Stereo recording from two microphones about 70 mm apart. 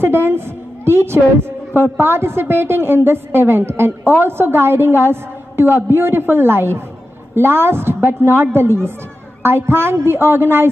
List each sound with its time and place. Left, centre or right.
0.0 s a woman's voice: right